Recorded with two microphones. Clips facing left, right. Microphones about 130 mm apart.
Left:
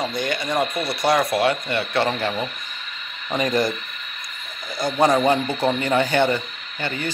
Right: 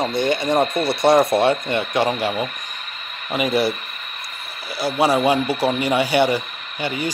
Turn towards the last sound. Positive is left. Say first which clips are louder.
# right 3 dB
turn(degrees=-10)  # may be behind; listen again after turning